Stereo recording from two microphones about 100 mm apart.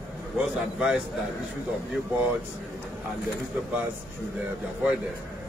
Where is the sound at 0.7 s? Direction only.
5° right (ahead or behind).